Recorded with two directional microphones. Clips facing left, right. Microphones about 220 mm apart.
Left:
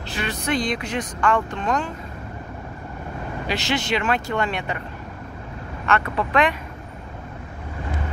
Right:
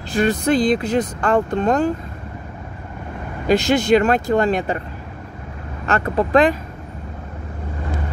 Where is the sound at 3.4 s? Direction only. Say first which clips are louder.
Right 10 dB; 45° right (ahead or behind).